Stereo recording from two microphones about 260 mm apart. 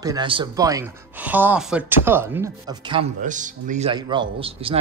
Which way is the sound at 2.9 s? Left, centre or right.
Right.